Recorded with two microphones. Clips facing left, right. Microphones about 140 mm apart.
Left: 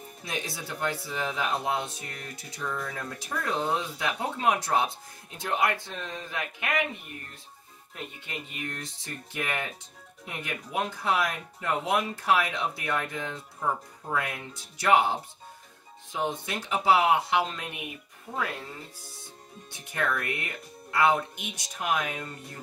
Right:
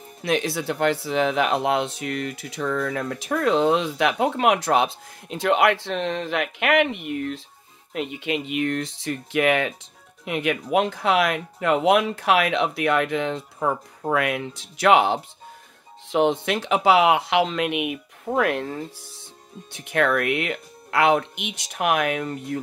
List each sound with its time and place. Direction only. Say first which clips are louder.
0.2 s speech: right 12 dB; 75° right (ahead or behind)